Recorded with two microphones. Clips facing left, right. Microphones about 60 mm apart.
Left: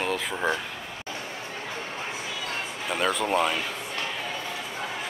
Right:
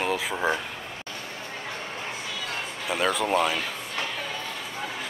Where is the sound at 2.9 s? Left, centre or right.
Centre.